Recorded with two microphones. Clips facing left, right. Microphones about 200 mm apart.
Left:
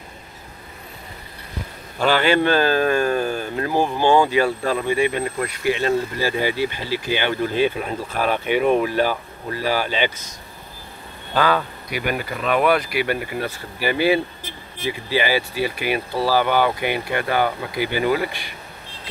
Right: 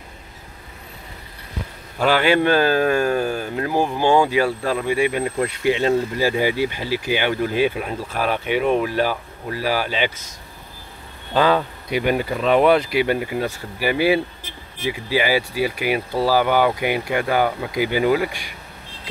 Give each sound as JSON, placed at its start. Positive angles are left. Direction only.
{"t": 2.0, "sound": "speech", "side_deg": -10}
{"t": 5.2, "sound": "speech", "side_deg": -25}
{"t": 11.3, "sound": "speech", "side_deg": -25}